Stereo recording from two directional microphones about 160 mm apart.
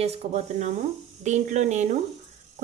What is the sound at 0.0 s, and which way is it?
Speech, 40° right (ahead or behind).